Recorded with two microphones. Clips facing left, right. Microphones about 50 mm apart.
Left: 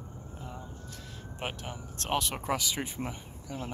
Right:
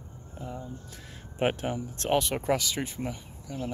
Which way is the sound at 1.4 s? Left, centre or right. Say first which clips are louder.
Right 10 dB; right.